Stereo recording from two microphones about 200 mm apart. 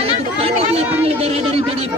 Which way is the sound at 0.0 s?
30° right (ahead or behind).